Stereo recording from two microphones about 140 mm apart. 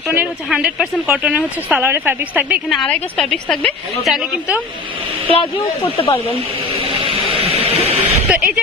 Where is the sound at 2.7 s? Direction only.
Centre (ahead or behind).